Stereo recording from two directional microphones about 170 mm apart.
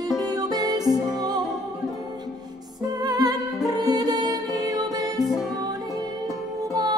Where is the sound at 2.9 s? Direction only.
20° right (ahead or behind).